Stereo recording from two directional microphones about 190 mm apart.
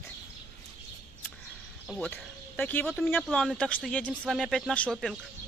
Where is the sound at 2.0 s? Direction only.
10° left (ahead or behind).